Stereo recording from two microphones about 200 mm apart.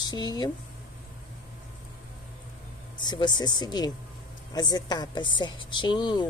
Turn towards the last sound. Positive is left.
turn(degrees=20)  # may be behind; listen again after turning